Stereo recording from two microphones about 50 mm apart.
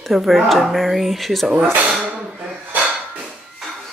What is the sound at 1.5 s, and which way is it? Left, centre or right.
Speech, right.